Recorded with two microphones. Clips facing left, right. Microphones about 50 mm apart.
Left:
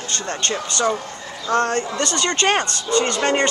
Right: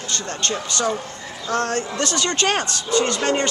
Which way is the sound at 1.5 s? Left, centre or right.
Centre.